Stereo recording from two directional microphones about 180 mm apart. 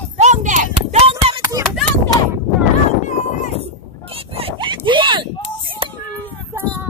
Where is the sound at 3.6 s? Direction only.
30° right (ahead or behind).